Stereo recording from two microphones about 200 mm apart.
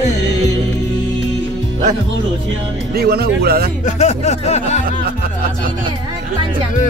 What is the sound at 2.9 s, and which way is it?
Speech, 50° right (ahead or behind).